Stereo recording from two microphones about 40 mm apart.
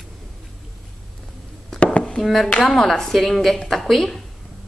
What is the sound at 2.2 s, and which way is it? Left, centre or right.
A woman's voice, centre.